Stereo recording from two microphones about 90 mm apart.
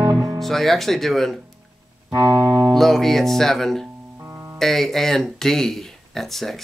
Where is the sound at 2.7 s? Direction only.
5° left (ahead or behind).